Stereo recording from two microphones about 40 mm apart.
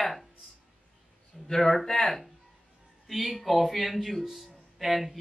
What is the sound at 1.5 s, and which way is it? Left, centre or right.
Speech, centre.